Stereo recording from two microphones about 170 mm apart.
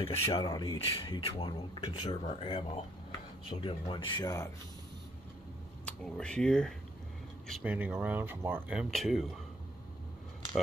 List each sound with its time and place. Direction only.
0.0 s speech: 35° left (ahead or behind)
0.5 s speech: 20° left (ahead or behind)
0.7 s speech: 35° left (ahead or behind)
2.0 s speech: 40° left (ahead or behind)
2.4 s speech: 25° left (ahead or behind)
5.9 s speech: 5° left (ahead or behind)
7.6 s speech: 10° right (ahead or behind)